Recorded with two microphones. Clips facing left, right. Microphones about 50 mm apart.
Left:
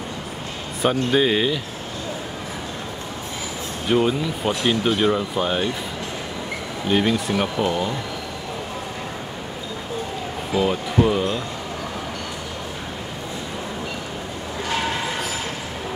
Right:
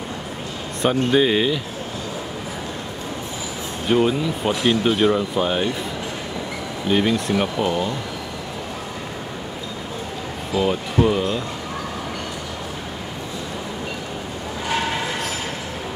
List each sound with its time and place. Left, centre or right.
0.8 s speech: centre
3.9 s speech: centre
6.9 s speech: centre
10.6 s speech: centre